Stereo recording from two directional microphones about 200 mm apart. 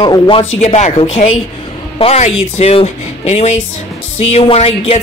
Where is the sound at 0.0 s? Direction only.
25° left (ahead or behind).